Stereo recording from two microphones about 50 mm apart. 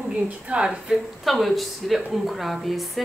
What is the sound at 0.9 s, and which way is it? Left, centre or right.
Speech, centre.